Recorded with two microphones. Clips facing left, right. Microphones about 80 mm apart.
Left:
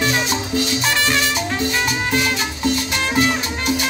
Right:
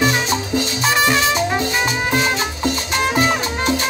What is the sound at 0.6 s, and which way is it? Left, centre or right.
Music, right.